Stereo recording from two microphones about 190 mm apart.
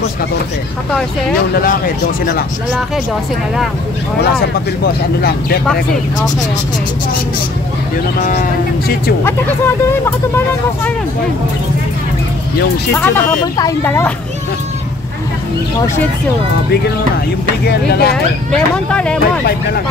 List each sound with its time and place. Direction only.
4.2 s speech: 55° left (ahead or behind)
9.8 s speech: 10° left (ahead or behind)
12.9 s speech: 10° left (ahead or behind)
17.6 s speech: 55° left (ahead or behind)
18.5 s speech: 5° left (ahead or behind)